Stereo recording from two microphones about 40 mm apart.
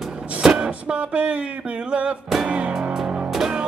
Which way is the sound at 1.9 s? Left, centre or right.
Right.